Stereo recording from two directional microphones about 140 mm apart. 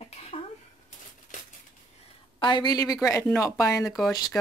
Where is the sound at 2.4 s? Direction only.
35° left (ahead or behind).